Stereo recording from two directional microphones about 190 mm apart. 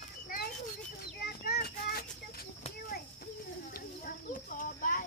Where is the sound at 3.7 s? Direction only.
45° left (ahead or behind).